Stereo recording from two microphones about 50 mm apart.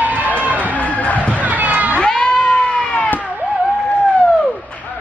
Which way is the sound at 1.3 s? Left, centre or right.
Right.